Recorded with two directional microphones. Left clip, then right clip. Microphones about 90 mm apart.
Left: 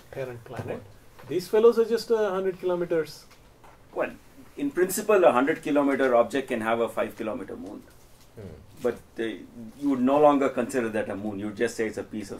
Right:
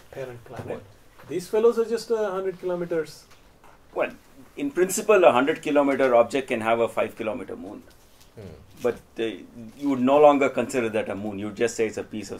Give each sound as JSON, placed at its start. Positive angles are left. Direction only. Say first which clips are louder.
{"t": 0.3, "sound": "speech", "louder": "even", "side_deg": 0}
{"t": 4.6, "sound": "speech", "louder": "right 2 dB", "side_deg": -25}
{"t": 8.8, "sound": "speech", "louder": "right 2 dB", "side_deg": -30}